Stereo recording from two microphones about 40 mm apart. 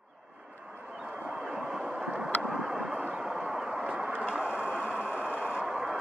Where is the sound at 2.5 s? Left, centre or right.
Centre.